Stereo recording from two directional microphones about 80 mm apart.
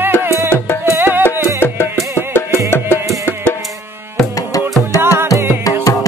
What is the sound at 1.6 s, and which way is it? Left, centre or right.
Music, left.